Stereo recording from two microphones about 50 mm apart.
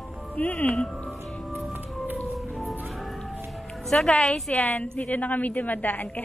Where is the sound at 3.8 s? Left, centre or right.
Centre.